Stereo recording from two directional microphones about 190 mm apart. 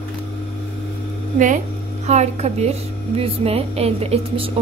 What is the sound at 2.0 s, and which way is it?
Speech, 35° right (ahead or behind).